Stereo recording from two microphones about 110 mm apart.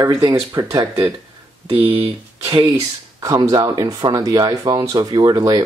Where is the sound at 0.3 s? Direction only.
35° right (ahead or behind).